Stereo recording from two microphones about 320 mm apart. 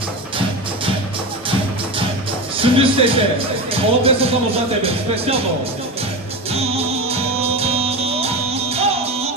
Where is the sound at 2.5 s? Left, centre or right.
Centre.